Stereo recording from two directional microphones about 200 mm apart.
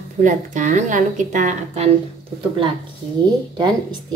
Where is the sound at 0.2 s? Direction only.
40° right (ahead or behind).